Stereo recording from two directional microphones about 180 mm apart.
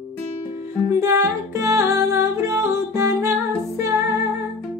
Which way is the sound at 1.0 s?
15° right (ahead or behind).